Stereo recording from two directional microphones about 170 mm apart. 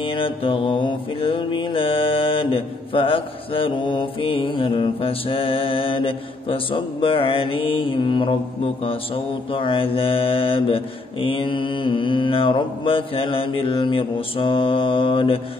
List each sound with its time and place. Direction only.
0.0 s mantra: 30° left (ahead or behind)